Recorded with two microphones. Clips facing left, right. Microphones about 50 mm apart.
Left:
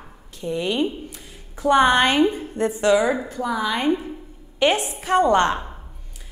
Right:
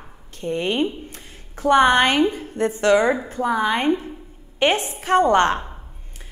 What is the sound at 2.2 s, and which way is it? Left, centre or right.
Speech, left.